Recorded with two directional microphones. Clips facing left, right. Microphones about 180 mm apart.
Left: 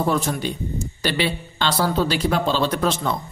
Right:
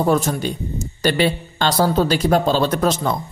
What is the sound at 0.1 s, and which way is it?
Speech, 45° right (ahead or behind).